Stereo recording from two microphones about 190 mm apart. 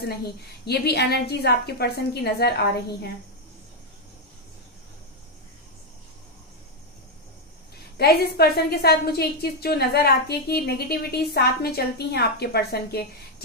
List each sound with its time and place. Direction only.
0.7 s a woman's voice: 60° left (ahead or behind)
8.0 s a woman's voice: 55° left (ahead or behind)